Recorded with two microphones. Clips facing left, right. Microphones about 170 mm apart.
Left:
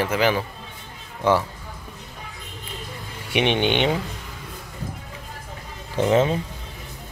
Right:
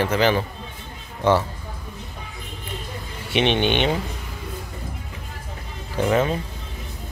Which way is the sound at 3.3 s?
15° left (ahead or behind).